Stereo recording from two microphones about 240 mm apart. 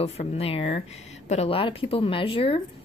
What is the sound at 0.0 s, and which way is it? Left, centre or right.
Speech, left.